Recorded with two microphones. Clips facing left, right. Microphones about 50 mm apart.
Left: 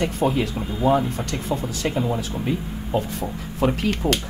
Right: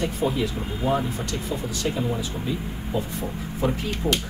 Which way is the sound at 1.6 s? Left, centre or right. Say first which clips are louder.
Left 2 dB; left.